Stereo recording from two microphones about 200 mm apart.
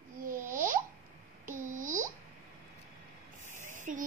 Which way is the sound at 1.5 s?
40° right (ahead or behind).